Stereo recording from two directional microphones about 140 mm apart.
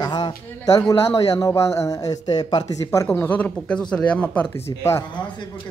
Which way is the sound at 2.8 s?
15° left (ahead or behind).